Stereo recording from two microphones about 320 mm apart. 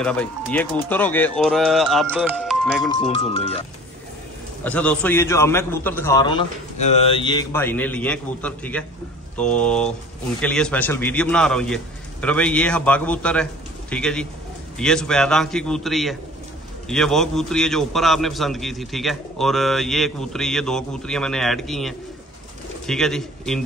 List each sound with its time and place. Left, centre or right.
0.0 s a man's voice: centre
2.9 s a man's voice: centre
4.6 s a man's voice: centre